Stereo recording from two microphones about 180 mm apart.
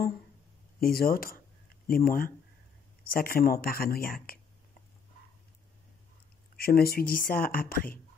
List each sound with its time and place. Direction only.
0.7 s speech: 55° left (ahead or behind)
6.5 s speech: 55° left (ahead or behind)